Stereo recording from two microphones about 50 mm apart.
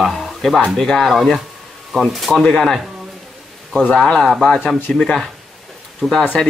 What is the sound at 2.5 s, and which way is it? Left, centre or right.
Speech, centre.